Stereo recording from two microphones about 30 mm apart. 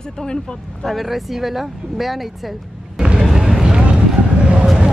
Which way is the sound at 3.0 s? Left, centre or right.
Right.